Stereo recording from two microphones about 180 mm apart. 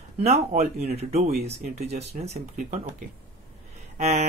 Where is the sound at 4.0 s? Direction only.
35° right (ahead or behind).